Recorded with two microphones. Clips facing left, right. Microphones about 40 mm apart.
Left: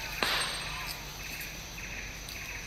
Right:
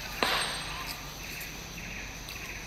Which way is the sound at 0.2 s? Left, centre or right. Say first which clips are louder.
Right 2 dB; right.